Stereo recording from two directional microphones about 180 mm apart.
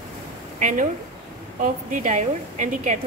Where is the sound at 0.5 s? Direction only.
45° right (ahead or behind).